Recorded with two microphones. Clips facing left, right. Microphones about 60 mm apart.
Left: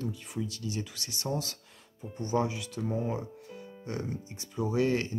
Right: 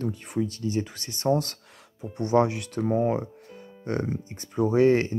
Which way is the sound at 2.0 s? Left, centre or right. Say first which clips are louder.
Right 8 dB; right.